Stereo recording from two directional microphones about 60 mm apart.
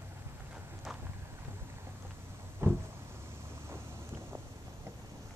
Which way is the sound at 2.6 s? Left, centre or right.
Right.